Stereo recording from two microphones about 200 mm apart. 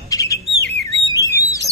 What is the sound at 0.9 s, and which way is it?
Bird, 30° right (ahead or behind).